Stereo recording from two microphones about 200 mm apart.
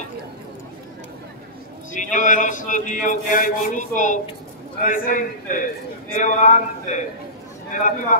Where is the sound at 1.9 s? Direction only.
40° left (ahead or behind).